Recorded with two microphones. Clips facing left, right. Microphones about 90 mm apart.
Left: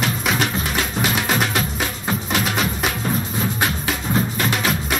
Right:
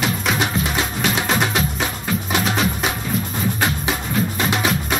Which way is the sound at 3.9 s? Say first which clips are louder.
Even; 15° right (ahead or behind).